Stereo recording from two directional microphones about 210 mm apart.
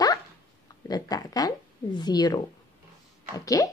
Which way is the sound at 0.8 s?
20° left (ahead or behind).